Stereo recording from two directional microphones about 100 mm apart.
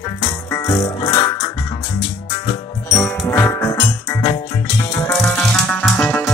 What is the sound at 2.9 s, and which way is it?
Music, 30° left (ahead or behind).